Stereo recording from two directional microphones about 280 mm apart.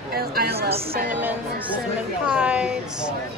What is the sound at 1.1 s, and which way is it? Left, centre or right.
Speech, centre.